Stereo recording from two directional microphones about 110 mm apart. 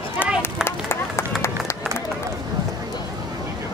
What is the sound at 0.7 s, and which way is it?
Run, 25° left (ahead or behind).